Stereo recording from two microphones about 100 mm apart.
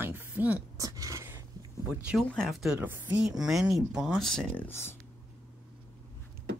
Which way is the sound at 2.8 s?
20° right (ahead or behind).